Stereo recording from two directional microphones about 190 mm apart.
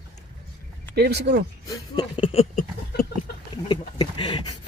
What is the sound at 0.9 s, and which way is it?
Speech, 60° right (ahead or behind).